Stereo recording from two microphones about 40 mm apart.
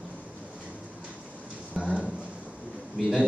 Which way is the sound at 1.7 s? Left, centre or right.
Right.